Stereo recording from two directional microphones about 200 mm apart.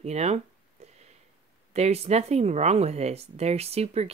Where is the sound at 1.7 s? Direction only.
30° right (ahead or behind).